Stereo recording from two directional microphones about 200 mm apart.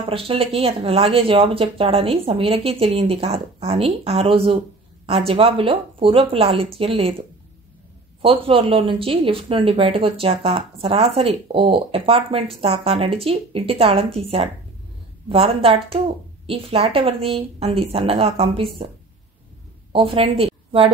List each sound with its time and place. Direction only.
0.1 s speech: 30° right (ahead or behind)
19.9 s a woman's voice: 25° right (ahead or behind)